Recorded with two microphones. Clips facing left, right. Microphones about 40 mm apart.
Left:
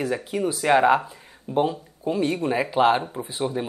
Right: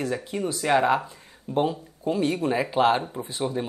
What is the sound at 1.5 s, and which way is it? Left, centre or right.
Speech, centre.